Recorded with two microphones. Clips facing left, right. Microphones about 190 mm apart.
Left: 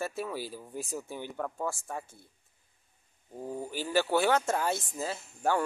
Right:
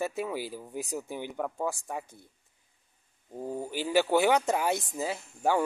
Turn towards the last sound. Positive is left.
turn(degrees=-10)  # may be behind; listen again after turning